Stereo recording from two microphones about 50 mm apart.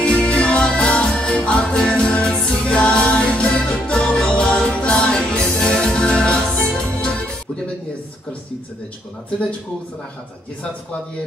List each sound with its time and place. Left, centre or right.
0.0 s music: centre